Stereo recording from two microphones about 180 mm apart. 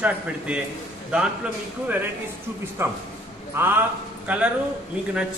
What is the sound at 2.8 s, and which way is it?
A man's voice, 15° right (ahead or behind).